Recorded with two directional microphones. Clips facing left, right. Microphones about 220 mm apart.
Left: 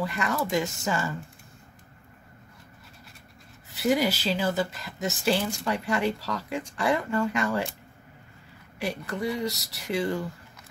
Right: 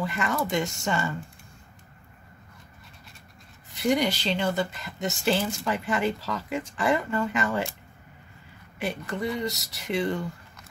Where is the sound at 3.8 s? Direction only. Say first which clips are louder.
Even; 5° left (ahead or behind).